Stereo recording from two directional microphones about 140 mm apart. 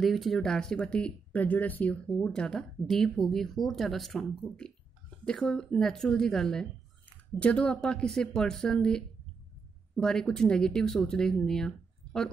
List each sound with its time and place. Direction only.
0.0 s speech: centre (ahead or behind)